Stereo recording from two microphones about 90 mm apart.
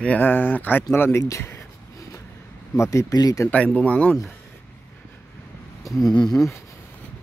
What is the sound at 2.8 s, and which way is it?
Speech, 35° left (ahead or behind).